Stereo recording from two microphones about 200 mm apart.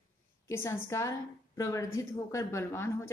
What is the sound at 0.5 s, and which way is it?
A woman's voice, 15° left (ahead or behind).